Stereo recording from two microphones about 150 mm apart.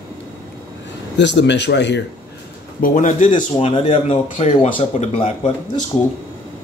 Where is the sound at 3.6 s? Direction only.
40° left (ahead or behind).